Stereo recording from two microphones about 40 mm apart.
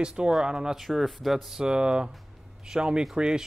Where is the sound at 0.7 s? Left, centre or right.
Centre.